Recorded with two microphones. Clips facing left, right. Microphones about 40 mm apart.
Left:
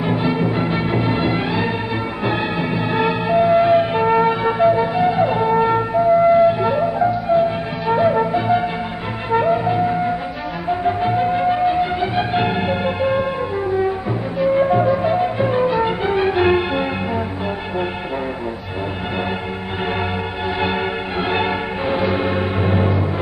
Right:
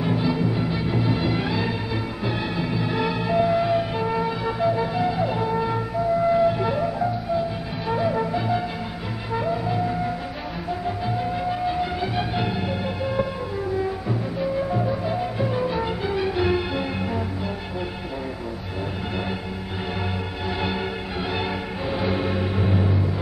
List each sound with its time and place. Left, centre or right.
0.0 s music: left
14.4 s music: left
20.6 s music: left